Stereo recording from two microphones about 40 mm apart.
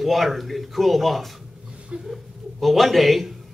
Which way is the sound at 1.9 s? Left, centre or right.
Right.